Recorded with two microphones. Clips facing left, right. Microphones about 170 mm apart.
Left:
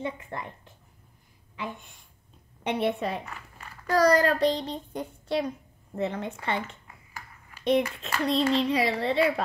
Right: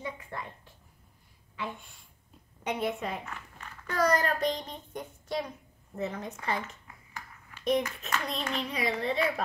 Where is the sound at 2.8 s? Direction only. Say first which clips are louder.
Left 5 dB; 30° left (ahead or behind).